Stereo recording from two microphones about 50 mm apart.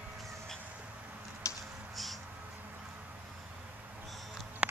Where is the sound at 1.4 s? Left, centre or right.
Left.